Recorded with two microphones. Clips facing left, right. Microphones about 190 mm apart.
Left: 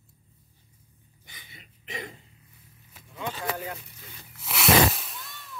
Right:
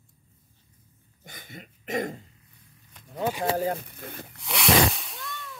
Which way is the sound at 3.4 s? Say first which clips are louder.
Right 9 dB; 35° right (ahead or behind).